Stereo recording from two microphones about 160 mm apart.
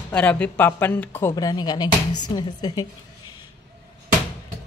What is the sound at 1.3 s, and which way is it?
Speech, 25° left (ahead or behind).